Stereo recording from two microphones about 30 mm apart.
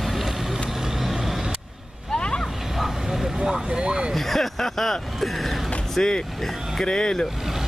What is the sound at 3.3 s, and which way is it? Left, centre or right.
Vehicle, right.